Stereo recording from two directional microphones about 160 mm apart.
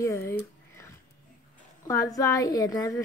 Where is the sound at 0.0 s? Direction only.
20° left (ahead or behind).